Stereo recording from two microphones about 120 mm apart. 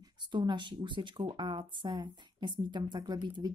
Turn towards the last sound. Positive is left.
turn(degrees=-40)  # may be behind; listen again after turning